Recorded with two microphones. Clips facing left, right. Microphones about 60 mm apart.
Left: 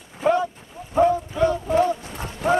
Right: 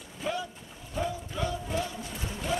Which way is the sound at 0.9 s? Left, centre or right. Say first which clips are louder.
Left 14 dB; left.